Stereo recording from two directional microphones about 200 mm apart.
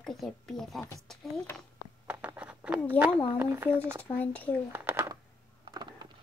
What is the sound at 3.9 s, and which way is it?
Speech, 5° left (ahead or behind).